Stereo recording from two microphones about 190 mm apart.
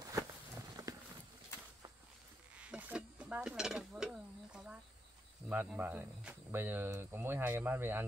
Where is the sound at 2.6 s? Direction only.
5° right (ahead or behind).